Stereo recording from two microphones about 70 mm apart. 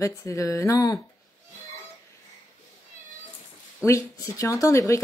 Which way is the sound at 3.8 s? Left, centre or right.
Left.